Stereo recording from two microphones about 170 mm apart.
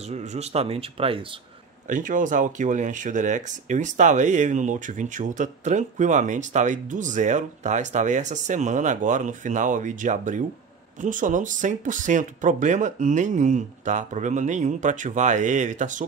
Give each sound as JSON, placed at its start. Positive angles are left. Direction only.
{"t": 0.1, "sound": "speech", "side_deg": -40}
{"t": 1.9, "sound": "speech", "side_deg": -50}